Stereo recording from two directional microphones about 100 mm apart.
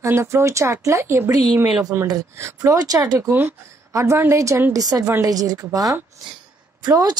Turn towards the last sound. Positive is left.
turn(degrees=-45)  # may be behind; listen again after turning